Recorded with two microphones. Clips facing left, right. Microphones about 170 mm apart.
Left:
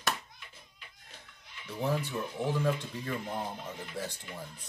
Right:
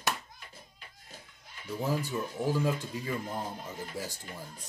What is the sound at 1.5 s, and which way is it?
Speech, 40° right (ahead or behind).